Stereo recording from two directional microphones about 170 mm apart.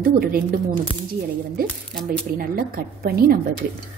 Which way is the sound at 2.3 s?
60° right (ahead or behind).